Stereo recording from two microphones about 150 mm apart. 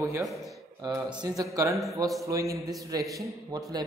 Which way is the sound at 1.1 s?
25° right (ahead or behind).